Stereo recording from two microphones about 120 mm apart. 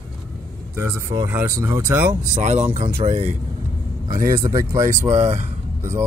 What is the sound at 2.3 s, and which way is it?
Speech, 75° right (ahead or behind).